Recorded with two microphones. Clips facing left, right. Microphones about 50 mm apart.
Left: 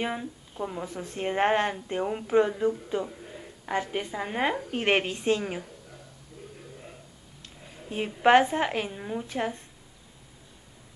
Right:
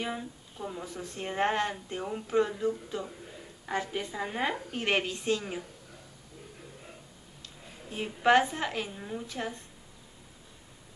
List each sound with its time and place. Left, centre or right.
0.0 s a woman's voice: left
7.9 s a woman's voice: left